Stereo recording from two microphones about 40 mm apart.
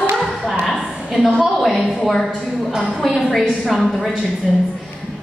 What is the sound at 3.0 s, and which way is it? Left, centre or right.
A woman's voice, centre.